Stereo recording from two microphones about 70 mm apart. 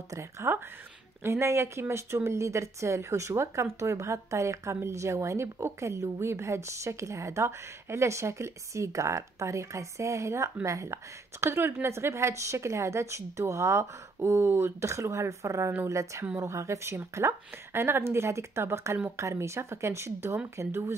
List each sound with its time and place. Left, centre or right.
0.1 s a woman's voice: right